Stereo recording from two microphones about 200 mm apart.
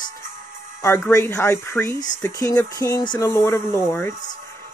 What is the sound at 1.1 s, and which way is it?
Speech, 15° left (ahead or behind).